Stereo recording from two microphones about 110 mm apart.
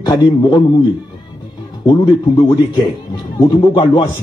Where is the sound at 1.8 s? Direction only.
45° left (ahead or behind).